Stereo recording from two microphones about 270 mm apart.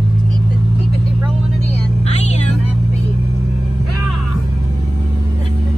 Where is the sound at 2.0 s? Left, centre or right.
Left.